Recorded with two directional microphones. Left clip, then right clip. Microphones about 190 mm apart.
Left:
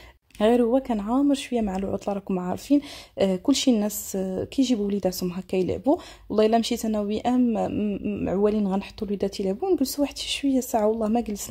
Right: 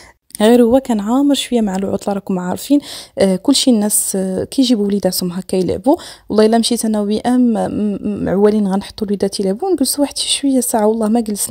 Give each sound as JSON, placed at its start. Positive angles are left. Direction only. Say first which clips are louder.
{"t": 0.4, "sound": "speech", "louder": "right 10 dB", "side_deg": -55}